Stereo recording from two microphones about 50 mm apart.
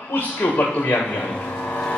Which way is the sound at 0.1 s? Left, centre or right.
Left.